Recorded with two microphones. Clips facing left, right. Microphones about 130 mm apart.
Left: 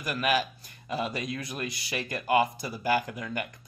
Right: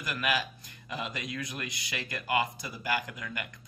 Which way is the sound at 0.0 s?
25° left (ahead or behind).